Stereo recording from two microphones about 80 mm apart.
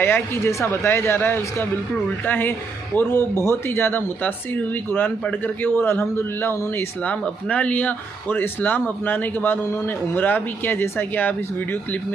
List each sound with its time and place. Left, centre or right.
0.0 s speech: left
5.4 s speech: left
7.0 s speech: centre